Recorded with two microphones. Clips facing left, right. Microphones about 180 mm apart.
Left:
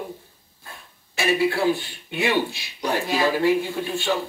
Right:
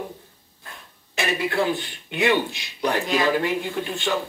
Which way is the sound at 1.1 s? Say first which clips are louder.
Left 2 dB; 20° right (ahead or behind).